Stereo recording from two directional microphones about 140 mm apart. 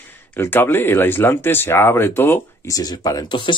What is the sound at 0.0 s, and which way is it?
Speech, 15° left (ahead or behind).